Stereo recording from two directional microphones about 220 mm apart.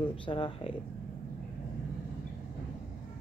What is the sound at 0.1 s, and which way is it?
Speech, 25° left (ahead or behind).